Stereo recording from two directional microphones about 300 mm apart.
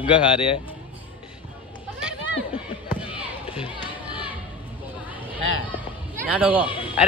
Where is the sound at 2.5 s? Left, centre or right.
Centre.